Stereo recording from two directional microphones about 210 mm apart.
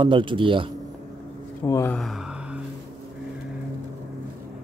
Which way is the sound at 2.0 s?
Centre (ahead or behind).